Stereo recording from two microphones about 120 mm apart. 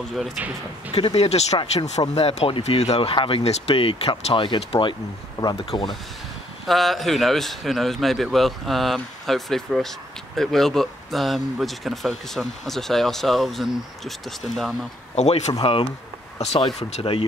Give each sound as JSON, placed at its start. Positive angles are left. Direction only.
{"t": 0.9, "sound": "speech", "side_deg": 55}
{"t": 6.6, "sound": "a man's voice", "side_deg": 0}
{"t": 15.1, "sound": "speech", "side_deg": 65}
{"t": 15.6, "sound": "speech", "side_deg": 50}
{"t": 16.9, "sound": "speech", "side_deg": 50}